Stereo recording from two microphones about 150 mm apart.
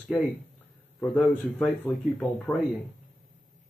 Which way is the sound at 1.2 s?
5° left (ahead or behind).